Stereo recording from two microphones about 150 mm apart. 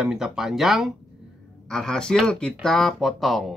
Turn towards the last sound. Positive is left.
turn(degrees=0)  # may be behind; listen again after turning